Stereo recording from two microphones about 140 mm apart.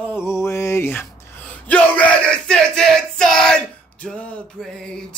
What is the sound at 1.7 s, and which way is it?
Yell, 10° left (ahead or behind).